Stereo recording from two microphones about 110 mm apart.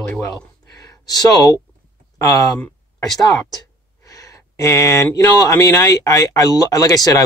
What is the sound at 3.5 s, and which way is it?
Speech, 30° left (ahead or behind).